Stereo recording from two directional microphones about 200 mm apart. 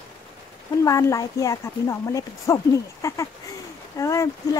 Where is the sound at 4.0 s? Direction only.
15° left (ahead or behind).